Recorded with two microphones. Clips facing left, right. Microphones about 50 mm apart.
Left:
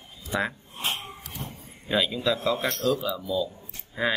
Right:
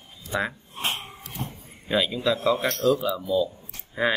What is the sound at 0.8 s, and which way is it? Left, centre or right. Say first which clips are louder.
Wheeze: right 1 dB; right.